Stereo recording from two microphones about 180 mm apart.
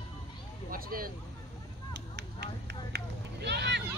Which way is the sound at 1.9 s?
65° right (ahead or behind).